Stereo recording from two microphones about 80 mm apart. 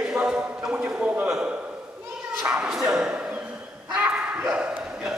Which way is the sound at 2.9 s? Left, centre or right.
Centre.